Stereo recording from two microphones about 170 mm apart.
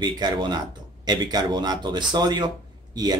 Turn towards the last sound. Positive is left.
turn(degrees=-25)  # may be behind; listen again after turning